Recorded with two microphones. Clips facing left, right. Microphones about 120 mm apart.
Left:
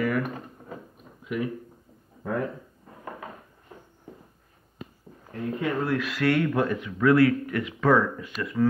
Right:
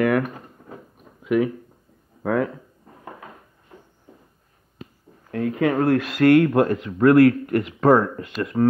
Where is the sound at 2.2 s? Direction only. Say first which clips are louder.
Right 7 dB; 90° right.